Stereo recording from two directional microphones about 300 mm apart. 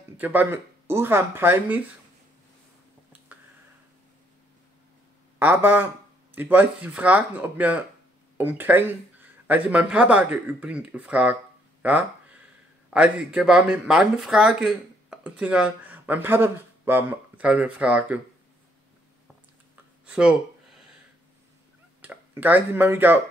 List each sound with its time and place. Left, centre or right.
0.2 s speech: centre
5.4 s speech: centre
11.8 s a sound: centre
12.9 s speech: centre
19.7 s a sound: centre
22.0 s speech: centre